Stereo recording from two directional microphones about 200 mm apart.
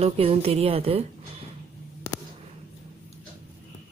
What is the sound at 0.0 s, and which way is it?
Speech, 30° right (ahead or behind).